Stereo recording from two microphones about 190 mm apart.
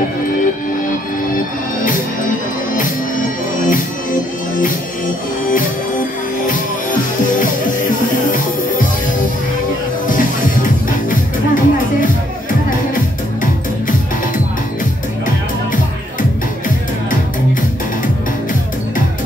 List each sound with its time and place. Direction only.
0.8 s music: 45° left (ahead or behind)
10.0 s music: 45° left (ahead or behind)